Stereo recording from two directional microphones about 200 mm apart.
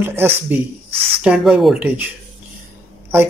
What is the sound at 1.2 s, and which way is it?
Speech, 5° right (ahead or behind).